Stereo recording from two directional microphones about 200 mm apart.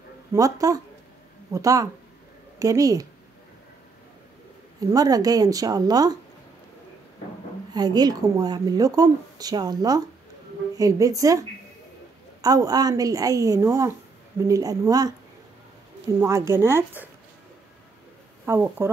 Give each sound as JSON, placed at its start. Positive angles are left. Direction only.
{"t": 0.3, "sound": "a woman's voice", "side_deg": -15}
{"t": 4.7, "sound": "a woman's voice", "side_deg": -20}
{"t": 7.7, "sound": "a woman's voice", "side_deg": -20}
{"t": 16.2, "sound": "a woman's voice", "side_deg": -15}
{"t": 18.4, "sound": "a woman's voice", "side_deg": -10}